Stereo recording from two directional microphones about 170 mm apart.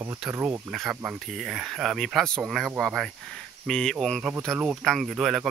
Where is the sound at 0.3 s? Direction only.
10° right (ahead or behind).